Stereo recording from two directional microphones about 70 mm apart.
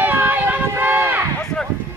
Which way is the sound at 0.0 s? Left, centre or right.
Right.